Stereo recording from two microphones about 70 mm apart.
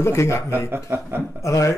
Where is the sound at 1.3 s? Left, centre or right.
Left.